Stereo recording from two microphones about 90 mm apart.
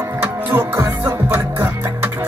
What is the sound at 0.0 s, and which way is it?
Music, 20° right (ahead or behind).